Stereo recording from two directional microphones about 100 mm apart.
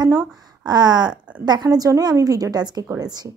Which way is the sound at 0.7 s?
45° right (ahead or behind).